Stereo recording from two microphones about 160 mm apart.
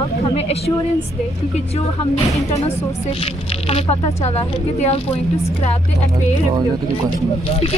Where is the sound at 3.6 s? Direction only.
40° left (ahead or behind).